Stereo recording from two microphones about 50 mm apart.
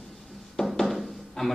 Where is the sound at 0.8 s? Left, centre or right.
Centre.